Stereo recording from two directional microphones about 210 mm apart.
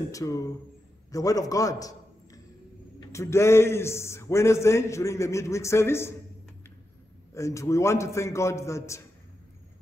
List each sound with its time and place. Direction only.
0.1 s a man's voice: 15° left (ahead or behind)
7.3 s a man's voice: 15° left (ahead or behind)